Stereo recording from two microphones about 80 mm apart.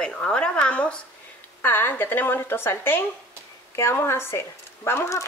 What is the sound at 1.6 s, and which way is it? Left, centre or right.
A woman's voice, left.